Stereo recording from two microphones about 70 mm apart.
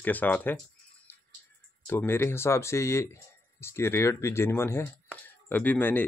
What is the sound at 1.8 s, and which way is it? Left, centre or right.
Speech, left.